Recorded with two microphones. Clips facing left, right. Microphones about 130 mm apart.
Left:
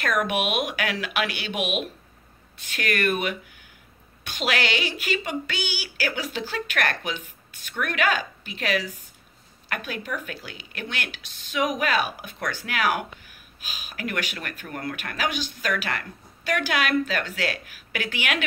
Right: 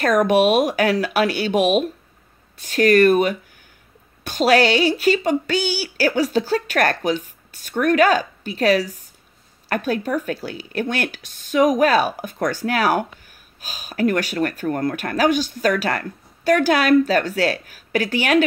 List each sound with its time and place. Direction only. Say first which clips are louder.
0.0 s speech: right 9 dB; 40° right (ahead or behind)